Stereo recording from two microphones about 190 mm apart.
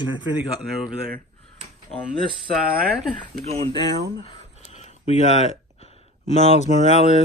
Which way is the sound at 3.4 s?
30° right (ahead or behind).